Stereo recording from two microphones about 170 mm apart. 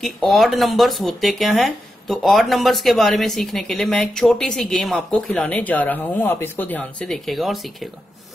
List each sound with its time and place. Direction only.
0.0 s speech: centre (ahead or behind)